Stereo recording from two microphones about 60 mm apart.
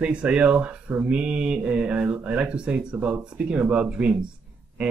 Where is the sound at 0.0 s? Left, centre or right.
Centre.